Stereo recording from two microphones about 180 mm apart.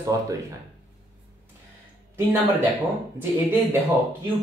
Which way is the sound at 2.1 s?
10° right (ahead or behind).